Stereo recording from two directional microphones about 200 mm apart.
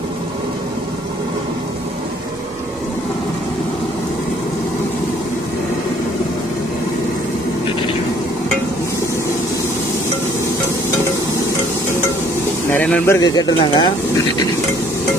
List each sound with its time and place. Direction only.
12.7 s speech: 10° left (ahead or behind)